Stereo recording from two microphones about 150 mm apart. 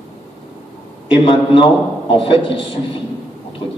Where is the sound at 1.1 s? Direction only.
35° left (ahead or behind).